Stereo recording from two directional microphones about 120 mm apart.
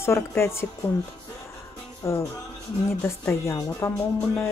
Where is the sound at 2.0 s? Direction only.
25° left (ahead or behind).